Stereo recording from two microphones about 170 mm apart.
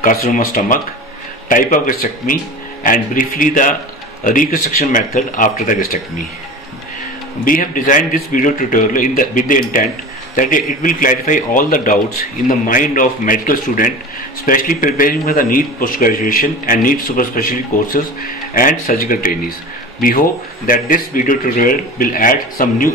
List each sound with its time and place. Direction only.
0.0 s a man's voice: 50° left (ahead or behind)
7.4 s a man's voice: 55° left (ahead or behind)